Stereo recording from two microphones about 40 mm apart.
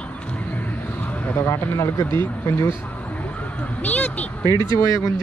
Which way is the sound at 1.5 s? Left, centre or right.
Left.